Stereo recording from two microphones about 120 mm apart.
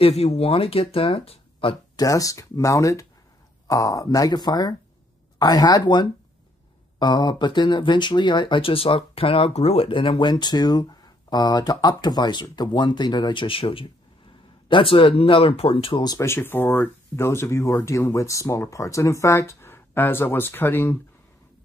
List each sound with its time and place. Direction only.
0.0 s speech: 60° left (ahead or behind)
2.0 s speech: 30° left (ahead or behind)
16.3 s speech: 15° left (ahead or behind)